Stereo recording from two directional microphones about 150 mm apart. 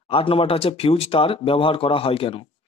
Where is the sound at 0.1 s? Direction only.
35° left (ahead or behind).